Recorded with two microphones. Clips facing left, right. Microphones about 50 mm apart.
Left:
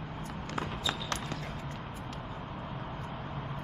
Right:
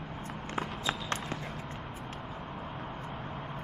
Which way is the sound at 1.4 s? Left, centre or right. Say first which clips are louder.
Even; centre.